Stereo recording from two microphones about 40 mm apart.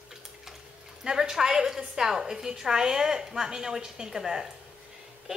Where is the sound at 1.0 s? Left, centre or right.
Centre.